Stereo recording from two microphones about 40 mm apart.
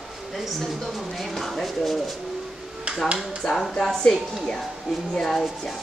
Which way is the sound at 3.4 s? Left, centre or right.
Centre.